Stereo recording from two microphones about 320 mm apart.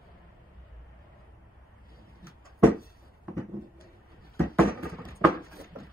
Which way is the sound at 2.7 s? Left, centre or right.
Left.